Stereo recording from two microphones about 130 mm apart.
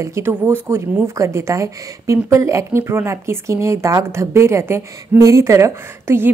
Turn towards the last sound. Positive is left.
turn(degrees=-20)  # may be behind; listen again after turning